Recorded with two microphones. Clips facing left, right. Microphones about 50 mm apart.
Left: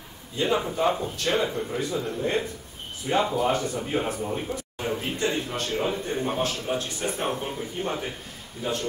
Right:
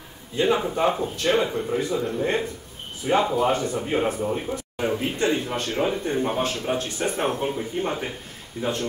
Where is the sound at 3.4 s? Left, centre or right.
Right.